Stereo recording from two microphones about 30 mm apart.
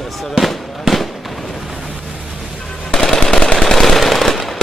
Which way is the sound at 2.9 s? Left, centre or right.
Centre.